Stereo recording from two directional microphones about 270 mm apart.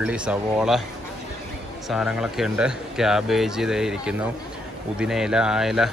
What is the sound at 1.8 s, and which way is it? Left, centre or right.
Speech, centre.